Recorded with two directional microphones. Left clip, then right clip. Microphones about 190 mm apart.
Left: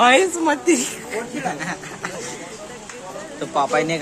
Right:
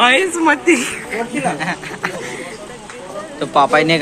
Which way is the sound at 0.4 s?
20° left (ahead or behind).